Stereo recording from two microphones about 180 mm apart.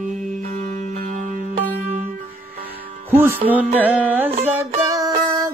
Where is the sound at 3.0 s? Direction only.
10° right (ahead or behind).